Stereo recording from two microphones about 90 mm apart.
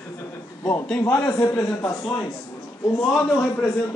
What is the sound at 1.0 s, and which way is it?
Speech, 40° left (ahead or behind).